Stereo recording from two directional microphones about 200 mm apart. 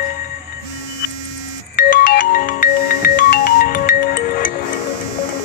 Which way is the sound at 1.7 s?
50° left (ahead or behind).